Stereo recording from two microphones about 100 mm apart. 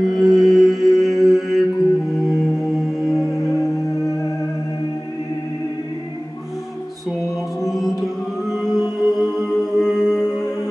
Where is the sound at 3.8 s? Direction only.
35° left (ahead or behind).